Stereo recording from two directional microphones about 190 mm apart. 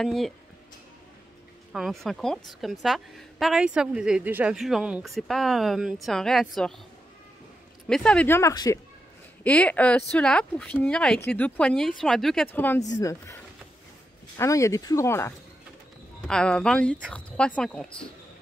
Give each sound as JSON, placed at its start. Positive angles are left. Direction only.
{"t": 0.0, "sound": "a woman's voice", "side_deg": 0}
{"t": 1.7, "sound": "a woman's voice", "side_deg": 0}
{"t": 7.9, "sound": "speech", "side_deg": 5}
{"t": 9.4, "sound": "a woman's voice", "side_deg": 5}